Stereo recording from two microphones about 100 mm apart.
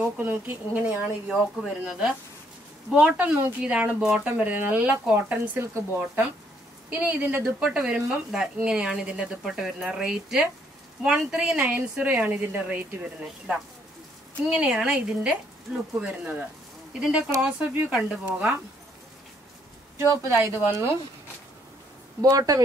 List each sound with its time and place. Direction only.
0.2 s a woman's voice: 20° right (ahead or behind)
1.3 s a woman's voice: 5° right (ahead or behind); by 7.4 s 20° right (ahead or behind)
7.4 s a woman's voice: 10° right (ahead or behind)
20.0 s speech: 30° right (ahead or behind)
22.2 s speech: 35° right (ahead or behind)